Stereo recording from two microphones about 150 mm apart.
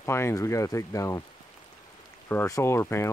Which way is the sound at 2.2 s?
15° left (ahead or behind).